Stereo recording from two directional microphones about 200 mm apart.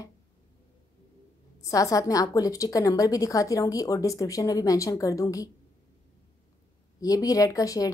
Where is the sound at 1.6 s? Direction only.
15° left (ahead or behind).